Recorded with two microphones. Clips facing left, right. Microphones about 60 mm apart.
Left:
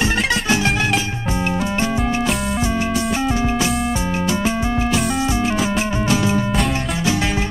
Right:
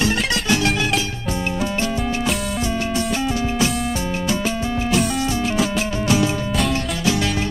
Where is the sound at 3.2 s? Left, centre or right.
Left.